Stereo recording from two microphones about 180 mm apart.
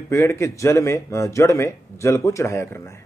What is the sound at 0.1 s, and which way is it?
A man's voice, 15° left (ahead or behind).